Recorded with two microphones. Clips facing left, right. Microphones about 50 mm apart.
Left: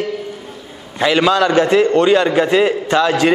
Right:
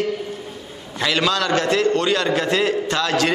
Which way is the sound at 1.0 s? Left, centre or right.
Centre.